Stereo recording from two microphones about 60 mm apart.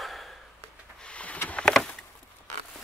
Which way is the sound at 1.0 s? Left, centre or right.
Left.